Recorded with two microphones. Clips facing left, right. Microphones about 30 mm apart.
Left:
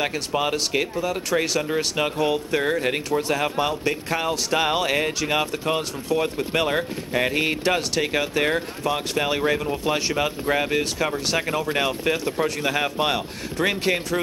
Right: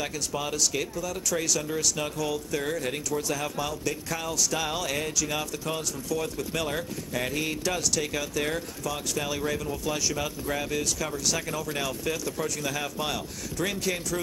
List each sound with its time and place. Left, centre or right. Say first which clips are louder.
0.0 s speech: left 7 dB; left